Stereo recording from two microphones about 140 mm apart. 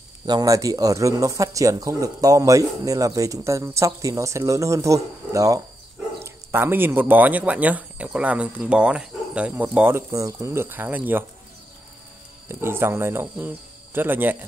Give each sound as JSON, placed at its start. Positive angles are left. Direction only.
{"t": 0.3, "sound": "speech", "side_deg": -25}
{"t": 12.4, "sound": "speech", "side_deg": -15}